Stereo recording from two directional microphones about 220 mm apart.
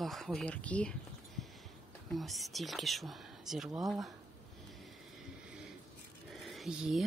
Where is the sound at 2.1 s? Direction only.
Centre (ahead or behind).